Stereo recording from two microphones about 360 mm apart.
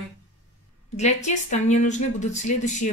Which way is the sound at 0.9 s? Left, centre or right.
Centre.